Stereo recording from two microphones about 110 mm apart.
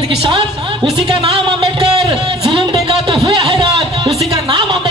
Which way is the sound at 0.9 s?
50° right (ahead or behind).